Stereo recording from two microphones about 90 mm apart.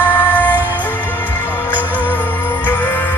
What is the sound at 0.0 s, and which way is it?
Music, 20° left (ahead or behind).